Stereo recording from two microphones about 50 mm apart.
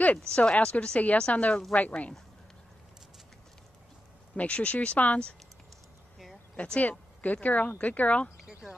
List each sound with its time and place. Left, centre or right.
0.0 s speech: left
4.4 s speech: left
6.8 s speech: left
8.5 s a sound: centre